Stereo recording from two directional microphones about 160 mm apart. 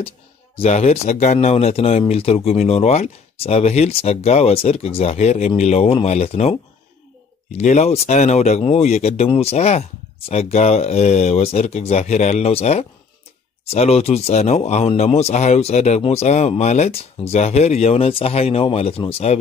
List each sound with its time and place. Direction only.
0.6 s speech: 40° left (ahead or behind)
7.5 s speech: 45° left (ahead or behind)